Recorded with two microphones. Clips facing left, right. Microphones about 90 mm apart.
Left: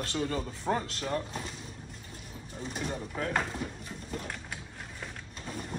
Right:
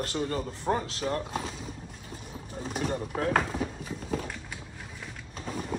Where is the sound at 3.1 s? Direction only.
65° right (ahead or behind).